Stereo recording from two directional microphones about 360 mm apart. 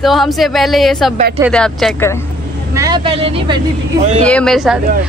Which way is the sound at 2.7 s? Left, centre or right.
Centre.